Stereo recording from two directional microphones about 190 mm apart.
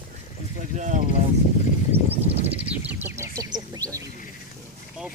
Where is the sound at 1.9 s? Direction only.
10° right (ahead or behind).